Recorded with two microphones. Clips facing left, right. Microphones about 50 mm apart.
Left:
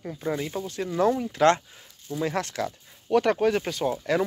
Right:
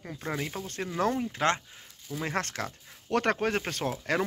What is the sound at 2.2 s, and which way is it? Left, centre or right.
Speech, right.